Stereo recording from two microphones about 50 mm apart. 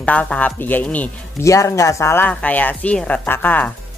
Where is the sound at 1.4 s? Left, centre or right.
Left.